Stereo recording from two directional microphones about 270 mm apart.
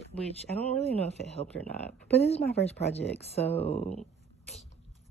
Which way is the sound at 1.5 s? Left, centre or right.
Left.